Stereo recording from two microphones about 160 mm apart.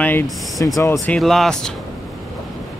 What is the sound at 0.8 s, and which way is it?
Speech, 15° left (ahead or behind).